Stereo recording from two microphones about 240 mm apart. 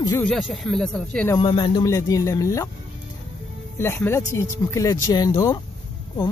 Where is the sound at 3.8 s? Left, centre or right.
Centre.